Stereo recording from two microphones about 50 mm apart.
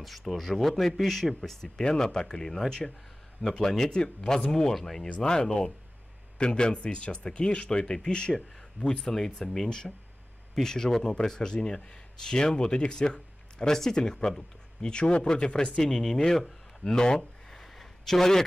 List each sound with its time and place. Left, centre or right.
0.0 s speech: centre
5.0 s speech: centre
16.9 s a sound: centre